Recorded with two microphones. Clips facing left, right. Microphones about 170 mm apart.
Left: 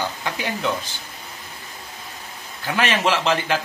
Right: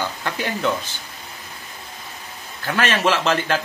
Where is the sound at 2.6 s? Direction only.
15° left (ahead or behind).